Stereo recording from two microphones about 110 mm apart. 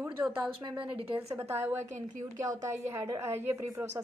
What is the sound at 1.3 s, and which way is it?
A woman's voice, 20° right (ahead or behind).